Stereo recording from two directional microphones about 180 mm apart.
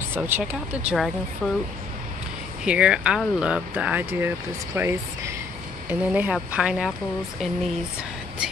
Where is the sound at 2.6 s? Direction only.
5° right (ahead or behind).